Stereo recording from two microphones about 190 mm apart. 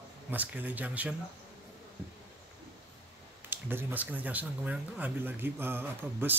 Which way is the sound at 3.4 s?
10° right (ahead or behind).